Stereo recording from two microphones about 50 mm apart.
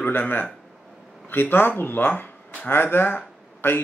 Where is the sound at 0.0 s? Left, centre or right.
Left.